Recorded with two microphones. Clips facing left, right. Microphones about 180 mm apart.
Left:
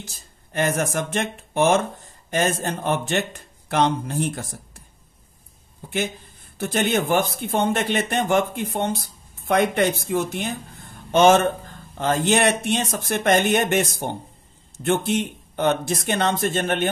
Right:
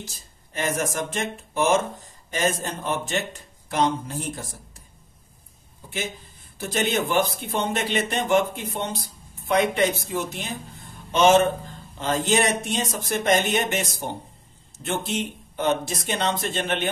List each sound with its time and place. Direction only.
0.0 s speech: 55° left (ahead or behind)
6.6 s a man's voice: 55° left (ahead or behind)
14.9 s a man's voice: 60° left (ahead or behind)